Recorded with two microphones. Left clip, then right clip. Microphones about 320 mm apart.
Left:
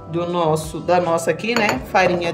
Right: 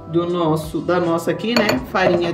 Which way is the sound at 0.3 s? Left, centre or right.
Left.